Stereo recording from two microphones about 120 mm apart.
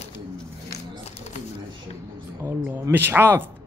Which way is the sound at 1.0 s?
65° left (ahead or behind).